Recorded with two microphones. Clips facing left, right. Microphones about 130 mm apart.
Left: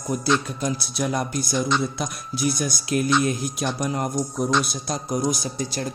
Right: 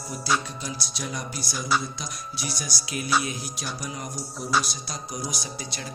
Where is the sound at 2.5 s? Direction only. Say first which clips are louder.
Left 9 dB; 50° left (ahead or behind).